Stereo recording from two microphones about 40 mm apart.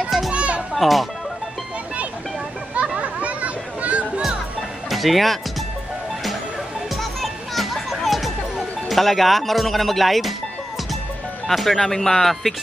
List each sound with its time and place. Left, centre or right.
0.3 s children playing: right
0.7 s speech: centre
3.0 s a sound: right
4.8 s speech: centre
7.0 s music: centre
8.8 s speech: centre
11.4 s speech: centre